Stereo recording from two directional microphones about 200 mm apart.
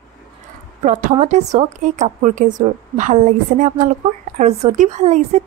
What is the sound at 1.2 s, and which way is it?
A woman's voice, 35° right (ahead or behind).